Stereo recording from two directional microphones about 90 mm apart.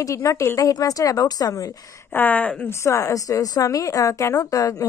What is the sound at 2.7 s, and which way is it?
A woman's voice, 30° left (ahead or behind).